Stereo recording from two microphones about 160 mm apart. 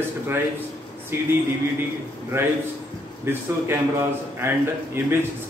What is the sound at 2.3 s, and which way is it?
A man's voice, 15° right (ahead or behind).